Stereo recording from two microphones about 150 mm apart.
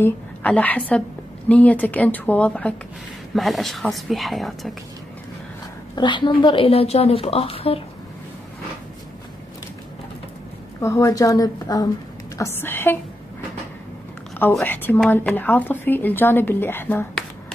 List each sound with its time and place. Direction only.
0.0 s a woman's voice: 10° left (ahead or behind)
5.9 s a woman's voice: 30° left (ahead or behind)
10.8 s a woman's voice: 20° left (ahead or behind)
14.6 s speech: 10° left (ahead or behind)